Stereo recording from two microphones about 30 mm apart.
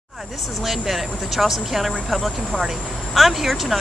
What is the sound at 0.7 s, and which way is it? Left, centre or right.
Speech, centre.